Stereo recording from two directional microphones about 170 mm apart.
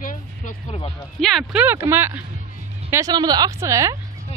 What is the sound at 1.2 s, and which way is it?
A woman's voice, centre (ahead or behind).